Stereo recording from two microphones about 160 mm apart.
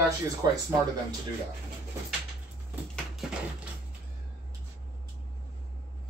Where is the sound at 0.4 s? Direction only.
25° right (ahead or behind).